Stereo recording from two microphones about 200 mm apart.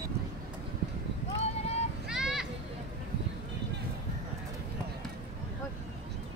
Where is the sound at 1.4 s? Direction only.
30° left (ahead or behind).